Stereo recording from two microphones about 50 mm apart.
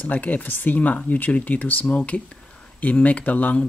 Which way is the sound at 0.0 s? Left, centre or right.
Left.